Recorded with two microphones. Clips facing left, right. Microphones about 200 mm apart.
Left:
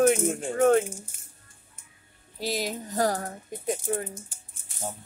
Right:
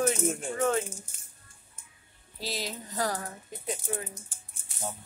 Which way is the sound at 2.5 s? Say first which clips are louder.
Left 6 dB; 50° left (ahead or behind).